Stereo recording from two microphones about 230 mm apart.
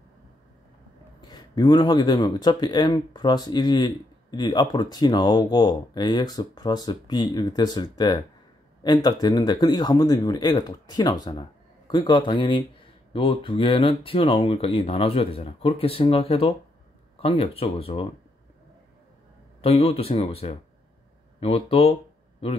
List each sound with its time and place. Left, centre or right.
1.2 s speech: centre
19.6 s speech: left